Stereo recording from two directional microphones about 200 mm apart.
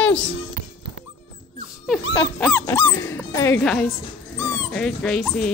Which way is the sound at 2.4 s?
10° left (ahead or behind).